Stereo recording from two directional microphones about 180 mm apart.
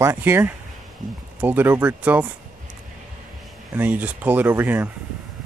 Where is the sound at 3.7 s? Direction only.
10° right (ahead or behind).